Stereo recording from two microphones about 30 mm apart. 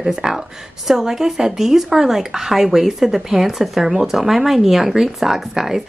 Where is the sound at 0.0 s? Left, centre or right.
Centre.